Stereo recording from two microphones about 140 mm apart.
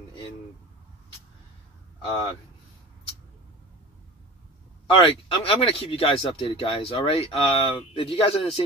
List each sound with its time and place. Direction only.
4.8 s speech: 35° left (ahead or behind)